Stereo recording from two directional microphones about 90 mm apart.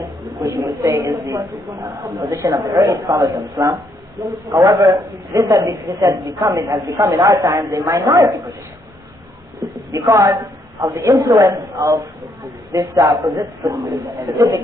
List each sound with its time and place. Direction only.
0.3 s a woman's voice: 40° right (ahead or behind)
9.6 s a woman's voice: 40° right (ahead or behind)